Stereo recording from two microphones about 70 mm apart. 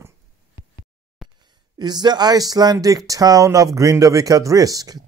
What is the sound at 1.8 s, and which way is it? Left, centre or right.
Speech, right.